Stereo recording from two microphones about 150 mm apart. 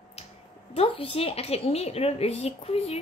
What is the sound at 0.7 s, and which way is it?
A woman's voice, 40° left (ahead or behind).